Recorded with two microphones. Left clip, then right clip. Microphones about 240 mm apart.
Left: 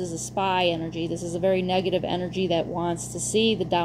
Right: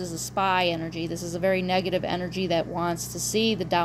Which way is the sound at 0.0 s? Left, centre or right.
Right.